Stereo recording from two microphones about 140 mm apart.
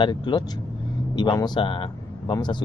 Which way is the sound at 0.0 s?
35° left (ahead or behind).